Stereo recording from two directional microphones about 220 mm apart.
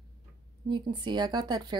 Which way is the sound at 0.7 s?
20° right (ahead or behind).